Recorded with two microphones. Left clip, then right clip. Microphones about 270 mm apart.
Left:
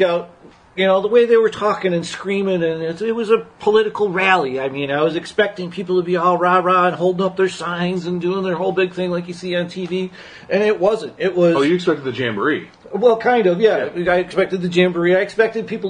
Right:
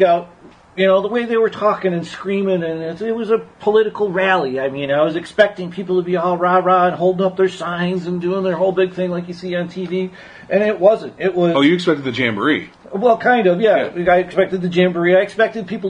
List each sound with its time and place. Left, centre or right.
0.7 s speech: centre
11.5 s speech: right
13.0 s speech: centre